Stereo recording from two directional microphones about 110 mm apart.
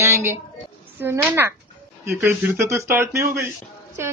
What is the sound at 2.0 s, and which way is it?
Speech, 20° right (ahead or behind).